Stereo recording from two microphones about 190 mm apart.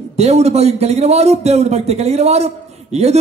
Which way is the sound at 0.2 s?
35° right (ahead or behind).